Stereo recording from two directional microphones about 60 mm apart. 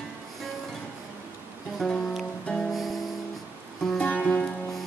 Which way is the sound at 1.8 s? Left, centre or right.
Centre.